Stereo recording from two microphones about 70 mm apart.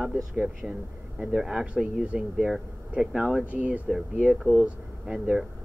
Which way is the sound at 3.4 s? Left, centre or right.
Right.